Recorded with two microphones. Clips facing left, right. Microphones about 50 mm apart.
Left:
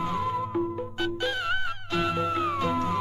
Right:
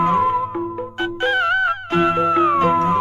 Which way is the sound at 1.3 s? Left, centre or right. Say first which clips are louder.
Right 12 dB; right.